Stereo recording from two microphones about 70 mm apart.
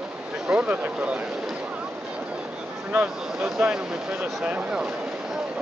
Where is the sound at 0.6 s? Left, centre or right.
Right.